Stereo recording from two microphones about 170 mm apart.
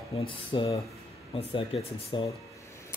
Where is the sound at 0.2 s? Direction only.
30° left (ahead or behind).